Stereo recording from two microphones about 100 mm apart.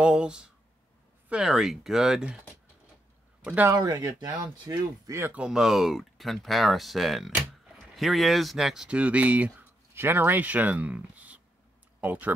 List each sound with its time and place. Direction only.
0.0 s speech: 10° right (ahead or behind)
3.7 s speech: 40° right (ahead or behind)
5.2 s speech: 10° right (ahead or behind)